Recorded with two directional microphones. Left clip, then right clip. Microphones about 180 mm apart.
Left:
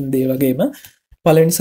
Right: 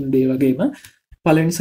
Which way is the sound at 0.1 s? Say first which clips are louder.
Even; 35° left (ahead or behind).